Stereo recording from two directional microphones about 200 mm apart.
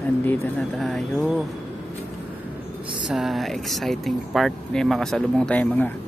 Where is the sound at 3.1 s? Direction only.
Centre (ahead or behind).